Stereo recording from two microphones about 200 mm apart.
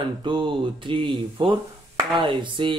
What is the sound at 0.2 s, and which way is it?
Speech, 25° right (ahead or behind).